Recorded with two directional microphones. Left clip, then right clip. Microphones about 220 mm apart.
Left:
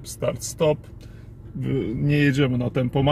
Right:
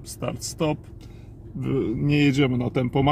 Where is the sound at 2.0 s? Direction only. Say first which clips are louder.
Even; 15° left (ahead or behind).